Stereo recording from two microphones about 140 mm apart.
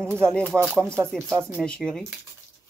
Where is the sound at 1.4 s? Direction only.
20° right (ahead or behind).